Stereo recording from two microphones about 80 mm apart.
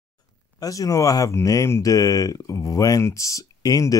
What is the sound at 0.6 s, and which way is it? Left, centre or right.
Speech, left.